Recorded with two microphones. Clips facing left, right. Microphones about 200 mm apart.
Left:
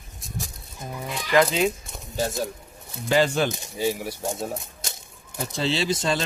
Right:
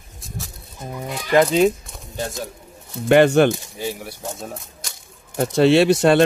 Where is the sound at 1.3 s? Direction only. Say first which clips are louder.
Right 5 dB; 35° right (ahead or behind).